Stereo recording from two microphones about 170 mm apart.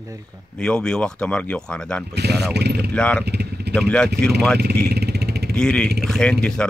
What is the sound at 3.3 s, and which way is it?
Vehicle, 75° right (ahead or behind).